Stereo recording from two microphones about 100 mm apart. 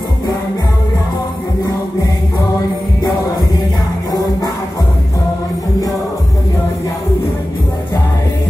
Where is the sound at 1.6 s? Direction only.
35° left (ahead or behind).